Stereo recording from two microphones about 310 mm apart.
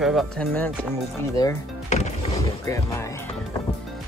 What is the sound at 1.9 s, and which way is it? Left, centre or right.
Music, left.